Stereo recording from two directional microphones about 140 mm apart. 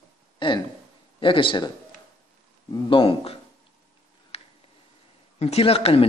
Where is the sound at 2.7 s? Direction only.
40° left (ahead or behind).